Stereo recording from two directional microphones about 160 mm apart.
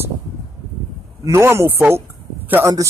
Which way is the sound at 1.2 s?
15° right (ahead or behind).